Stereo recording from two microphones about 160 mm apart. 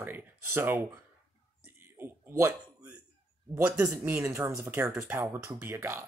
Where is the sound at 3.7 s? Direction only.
15° right (ahead or behind).